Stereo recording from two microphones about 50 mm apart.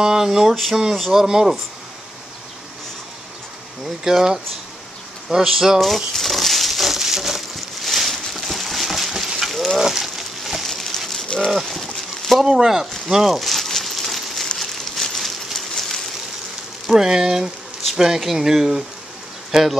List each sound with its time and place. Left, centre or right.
0.0 s speech: centre
3.8 s speech: centre
5.4 s a sound: centre
11.2 s livestock: centre
11.5 s livestock: centre
12.4 s speech: centre
13.1 s a sound: centre
16.8 s frying: centre
17.9 s speech: centre